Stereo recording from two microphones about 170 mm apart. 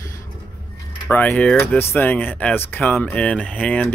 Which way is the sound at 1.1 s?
10° left (ahead or behind).